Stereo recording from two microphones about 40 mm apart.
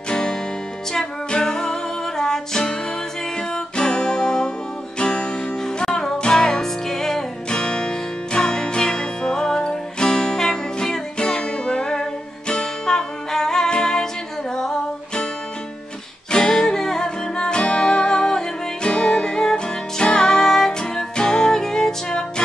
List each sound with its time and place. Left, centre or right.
0.1 s music: centre
5.8 s music: centre
16.3 s music: centre